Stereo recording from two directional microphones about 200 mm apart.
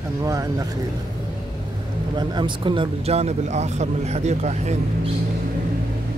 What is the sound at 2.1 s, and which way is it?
A man's voice, 25° right (ahead or behind).